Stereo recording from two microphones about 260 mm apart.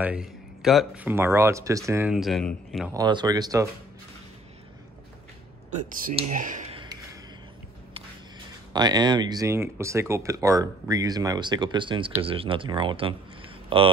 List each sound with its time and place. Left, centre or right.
0.0 s speech: centre
2.9 s speech: centre
5.7 s speech: right
6.8 s a sound: centre
8.7 s speech: centre